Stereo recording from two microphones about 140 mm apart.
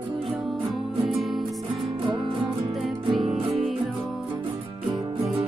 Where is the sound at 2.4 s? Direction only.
Centre (ahead or behind).